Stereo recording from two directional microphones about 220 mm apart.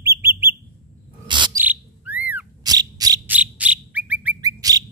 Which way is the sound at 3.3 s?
5° right (ahead or behind).